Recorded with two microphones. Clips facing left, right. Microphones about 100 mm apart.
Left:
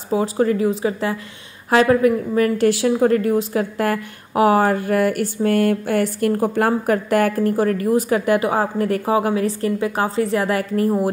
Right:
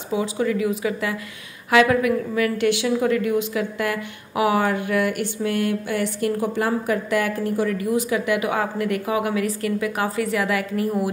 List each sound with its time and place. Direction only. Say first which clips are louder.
0.1 s a woman's voice: left 4 dB; 40° left (ahead or behind)